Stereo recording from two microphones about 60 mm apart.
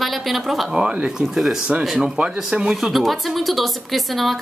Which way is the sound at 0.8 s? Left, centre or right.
Centre.